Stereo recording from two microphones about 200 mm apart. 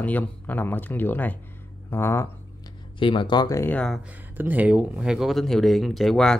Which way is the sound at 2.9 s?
25° left (ahead or behind).